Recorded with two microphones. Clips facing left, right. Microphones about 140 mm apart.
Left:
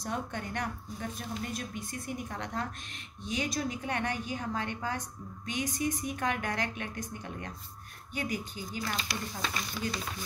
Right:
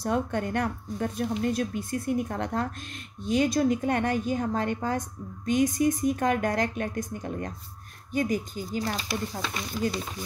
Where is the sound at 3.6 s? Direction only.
50° right (ahead or behind).